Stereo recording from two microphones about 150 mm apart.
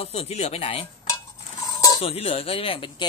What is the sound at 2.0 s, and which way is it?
Speech, 40° left (ahead or behind).